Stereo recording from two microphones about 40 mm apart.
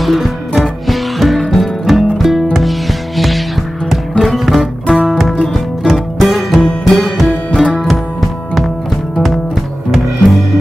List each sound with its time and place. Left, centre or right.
0.0 s music: centre
3.2 s music: centre
9.8 s music: centre